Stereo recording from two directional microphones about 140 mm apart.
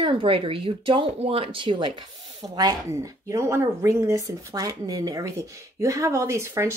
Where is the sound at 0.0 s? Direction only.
40° right (ahead or behind).